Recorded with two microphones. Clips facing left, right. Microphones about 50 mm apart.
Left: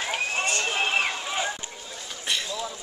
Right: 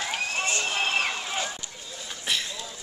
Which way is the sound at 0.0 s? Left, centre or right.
Centre.